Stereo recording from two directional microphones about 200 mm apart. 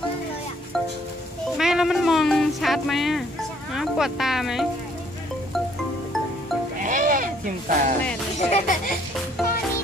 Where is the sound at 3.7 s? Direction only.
Centre (ahead or behind).